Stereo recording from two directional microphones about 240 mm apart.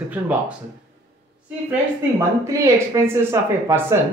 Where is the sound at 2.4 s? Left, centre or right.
Centre.